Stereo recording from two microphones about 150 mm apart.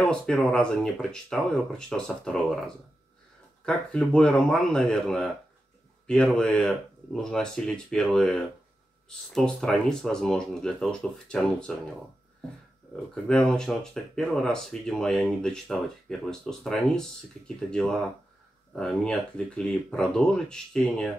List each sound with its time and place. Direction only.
0.0 s speech: 5° left (ahead or behind)
12.9 s speech: 5° left (ahead or behind)